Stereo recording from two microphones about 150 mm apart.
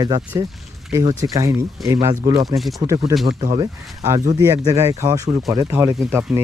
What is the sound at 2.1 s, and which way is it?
Speech, 70° right (ahead or behind).